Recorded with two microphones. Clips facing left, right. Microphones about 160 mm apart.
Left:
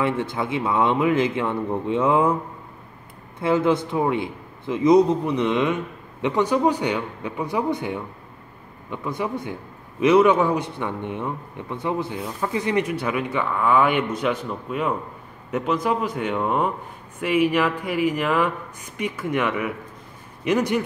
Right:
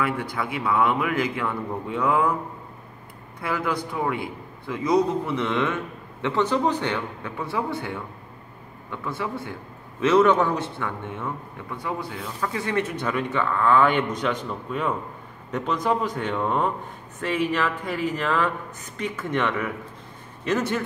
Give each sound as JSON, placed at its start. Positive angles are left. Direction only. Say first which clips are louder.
{"t": 0.0, "sound": "a man's voice", "louder": "left 3 dB", "side_deg": 25}
{"t": 3.3, "sound": "a man's voice", "louder": "left 7 dB", "side_deg": 25}